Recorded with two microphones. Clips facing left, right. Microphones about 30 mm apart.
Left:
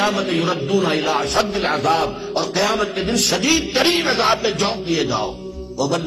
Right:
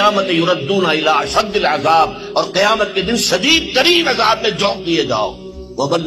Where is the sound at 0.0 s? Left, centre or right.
Right.